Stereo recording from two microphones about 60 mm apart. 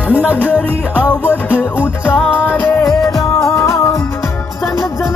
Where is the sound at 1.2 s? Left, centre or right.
Left.